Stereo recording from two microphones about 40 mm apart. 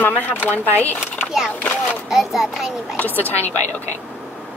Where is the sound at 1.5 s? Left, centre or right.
Left.